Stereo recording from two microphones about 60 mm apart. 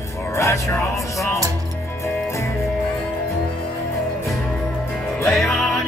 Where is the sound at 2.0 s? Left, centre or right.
Left.